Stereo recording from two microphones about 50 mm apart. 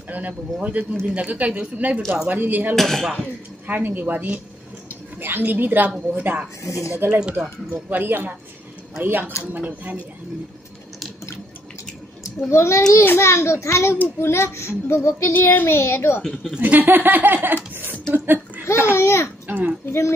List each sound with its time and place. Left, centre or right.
0.6 s speech: right
2.7 s speech: centre
3.6 s a woman's voice: right
6.6 s speech: left
6.9 s speech: right
12.4 s a child's voice: left
14.2 s speech: left
15.3 s speech: left
16.2 s speech: centre
16.5 s speech: right
18.9 s speech: left
19.4 s a child's voice: right
19.9 s speech: left